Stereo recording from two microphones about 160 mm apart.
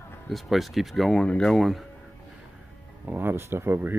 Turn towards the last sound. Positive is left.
turn(degrees=-15)  # may be behind; listen again after turning